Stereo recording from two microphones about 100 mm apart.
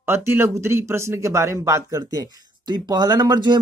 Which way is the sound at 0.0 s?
25° right (ahead or behind).